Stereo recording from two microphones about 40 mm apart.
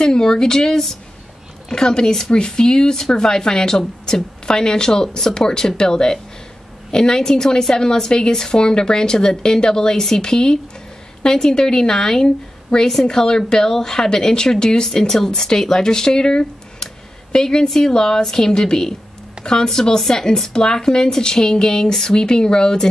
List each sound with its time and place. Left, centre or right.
0.0 s speech: centre